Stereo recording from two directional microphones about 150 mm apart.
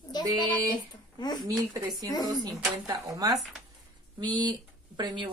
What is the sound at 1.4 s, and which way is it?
A woman's voice, 30° right (ahead or behind).